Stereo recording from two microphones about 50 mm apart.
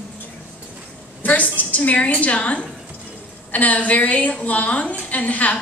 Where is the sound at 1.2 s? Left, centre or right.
Left.